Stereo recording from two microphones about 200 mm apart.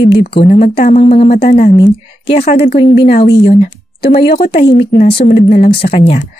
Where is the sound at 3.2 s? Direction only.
55° left (ahead or behind).